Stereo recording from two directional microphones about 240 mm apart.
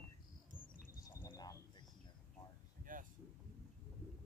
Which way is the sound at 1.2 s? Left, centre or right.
Centre.